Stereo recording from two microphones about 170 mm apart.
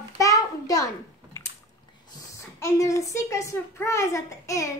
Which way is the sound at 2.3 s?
15° left (ahead or behind).